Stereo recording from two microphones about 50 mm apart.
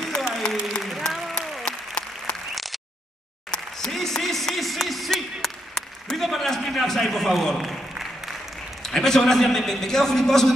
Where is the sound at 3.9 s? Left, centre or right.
Centre.